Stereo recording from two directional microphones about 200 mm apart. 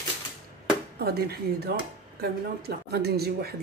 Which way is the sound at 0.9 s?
50° right (ahead or behind).